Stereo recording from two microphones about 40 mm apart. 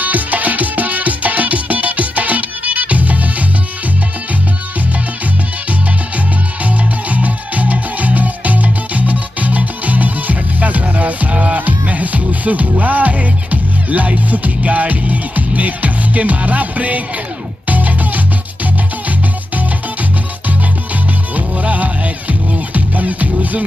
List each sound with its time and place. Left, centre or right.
0.0 s music: right
5.7 s music: right
21.4 s music: right